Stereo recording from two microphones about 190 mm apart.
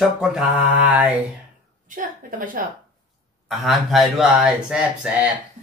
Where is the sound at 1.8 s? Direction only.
45° right (ahead or behind).